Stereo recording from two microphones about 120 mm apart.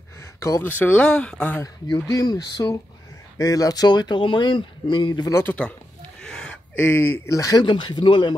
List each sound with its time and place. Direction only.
0.2 s a sound: 25° left (ahead or behind)
0.7 s speech: 10° left (ahead or behind)
1.6 s speech: 30° left (ahead or behind)
5.3 s speech: 15° left (ahead or behind)
7.6 s speech: 40° left (ahead or behind)